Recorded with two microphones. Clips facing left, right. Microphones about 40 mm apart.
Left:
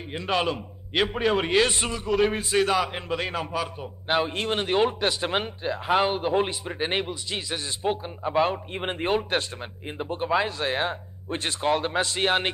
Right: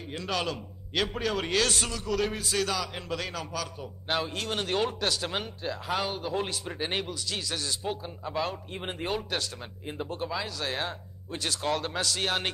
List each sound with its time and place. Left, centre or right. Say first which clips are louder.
0.1 s a man's voice: left 6 dB; left